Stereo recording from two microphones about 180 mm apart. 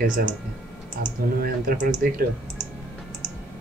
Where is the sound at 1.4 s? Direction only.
60° right (ahead or behind).